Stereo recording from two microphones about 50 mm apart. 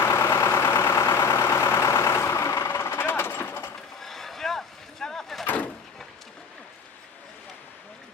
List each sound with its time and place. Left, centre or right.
0.0 s vehicle: left
4.0 s vehicle: centre